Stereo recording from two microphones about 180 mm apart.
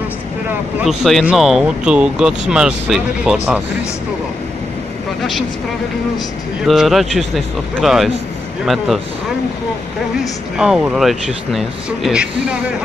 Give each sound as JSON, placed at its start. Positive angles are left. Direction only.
{"t": 0.8, "sound": "speech", "side_deg": 0}
{"t": 6.6, "sound": "speech", "side_deg": 0}
{"t": 10.6, "sound": "speech", "side_deg": -5}